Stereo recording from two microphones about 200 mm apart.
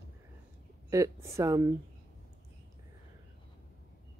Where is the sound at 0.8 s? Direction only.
15° right (ahead or behind).